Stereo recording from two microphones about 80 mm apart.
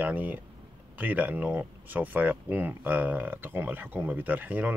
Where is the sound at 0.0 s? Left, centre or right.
Right.